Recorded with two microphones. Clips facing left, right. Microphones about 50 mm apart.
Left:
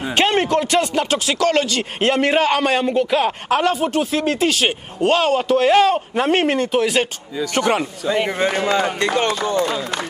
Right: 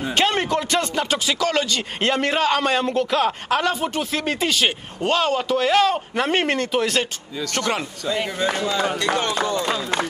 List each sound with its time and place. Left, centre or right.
0.1 s a sound: left
0.6 s speech: centre
5.1 s speech: centre
7.0 s speech: centre
8.1 s speech: left